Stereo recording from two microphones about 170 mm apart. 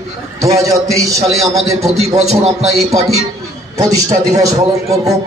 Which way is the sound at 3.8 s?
20° right (ahead or behind).